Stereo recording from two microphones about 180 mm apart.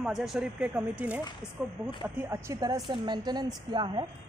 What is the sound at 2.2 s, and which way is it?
A woman's voice, 15° right (ahead or behind).